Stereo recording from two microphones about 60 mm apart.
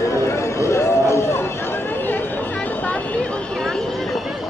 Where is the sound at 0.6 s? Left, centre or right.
Left.